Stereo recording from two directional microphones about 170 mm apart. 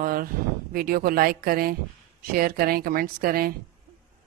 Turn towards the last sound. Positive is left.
turn(degrees=-60)  # may be behind; listen again after turning